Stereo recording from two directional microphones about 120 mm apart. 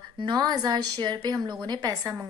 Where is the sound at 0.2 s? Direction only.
35° right (ahead or behind).